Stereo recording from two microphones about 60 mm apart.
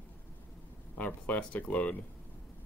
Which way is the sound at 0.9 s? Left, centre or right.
Left.